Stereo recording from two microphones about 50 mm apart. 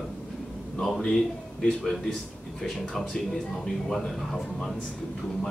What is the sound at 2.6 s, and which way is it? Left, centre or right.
Speech, centre.